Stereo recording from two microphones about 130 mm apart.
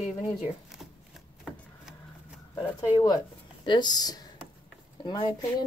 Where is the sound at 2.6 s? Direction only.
25° left (ahead or behind).